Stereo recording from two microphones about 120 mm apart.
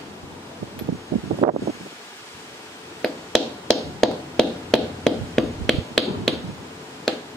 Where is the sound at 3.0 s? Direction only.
5° left (ahead or behind).